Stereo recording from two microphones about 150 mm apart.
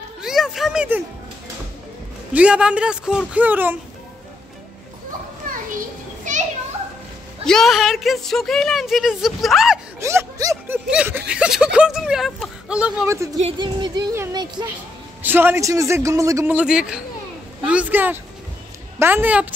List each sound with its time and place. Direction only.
0.2 s a sound: 5° right (ahead or behind)
2.3 s speech: 5° right (ahead or behind)
5.8 s children playing: 55° right (ahead or behind)
7.4 s speech: centre (ahead or behind)
9.9 s speech: 20° right (ahead or behind)
13.0 s a man's voice: 20° right (ahead or behind)
13.6 s a man's voice: 30° right (ahead or behind)
15.2 s a man's voice: 15° right (ahead or behind)
16.5 s speech: 5° right (ahead or behind)